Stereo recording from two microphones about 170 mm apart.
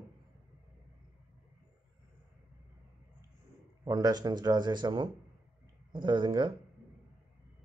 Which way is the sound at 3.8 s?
25° right (ahead or behind).